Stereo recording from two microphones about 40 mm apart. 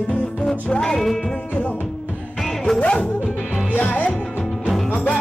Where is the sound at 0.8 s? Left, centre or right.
Centre.